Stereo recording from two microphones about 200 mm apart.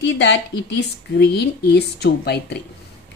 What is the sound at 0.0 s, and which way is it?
A woman's voice, 60° left (ahead or behind).